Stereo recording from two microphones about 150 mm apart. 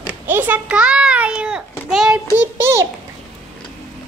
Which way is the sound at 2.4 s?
15° right (ahead or behind).